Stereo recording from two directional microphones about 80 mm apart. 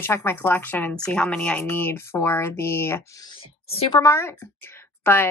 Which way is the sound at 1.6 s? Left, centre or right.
Left.